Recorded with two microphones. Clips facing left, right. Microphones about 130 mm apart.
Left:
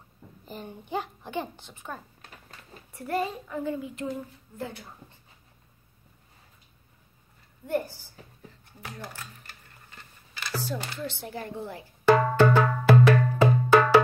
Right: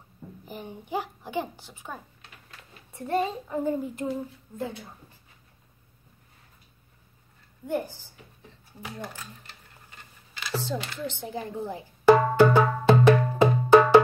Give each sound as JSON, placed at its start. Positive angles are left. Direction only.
{"t": 0.5, "sound": "a child's voice", "side_deg": -15}
{"t": 4.0, "sound": "a child's voice", "side_deg": -15}
{"t": 7.6, "sound": "a child's voice", "side_deg": -15}
{"t": 10.5, "sound": "a sound", "side_deg": -25}
{"t": 11.1, "sound": "music", "side_deg": -20}
{"t": 12.8, "sound": "wood block", "side_deg": -20}